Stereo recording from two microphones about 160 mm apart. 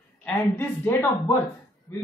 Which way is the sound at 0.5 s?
15° left (ahead or behind).